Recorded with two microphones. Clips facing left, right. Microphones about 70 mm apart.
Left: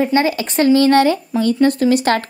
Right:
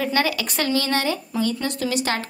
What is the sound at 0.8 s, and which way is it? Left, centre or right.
Speech, left.